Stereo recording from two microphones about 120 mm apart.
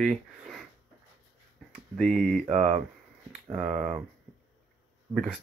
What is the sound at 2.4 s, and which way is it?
Speech, 65° right (ahead or behind).